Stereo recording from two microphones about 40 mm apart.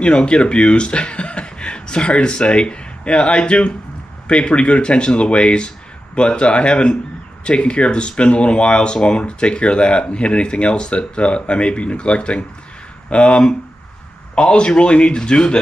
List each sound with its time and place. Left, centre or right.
0.0 s a man's voice: left